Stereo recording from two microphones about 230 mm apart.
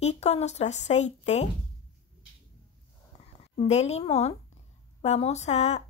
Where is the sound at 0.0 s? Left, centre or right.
Left.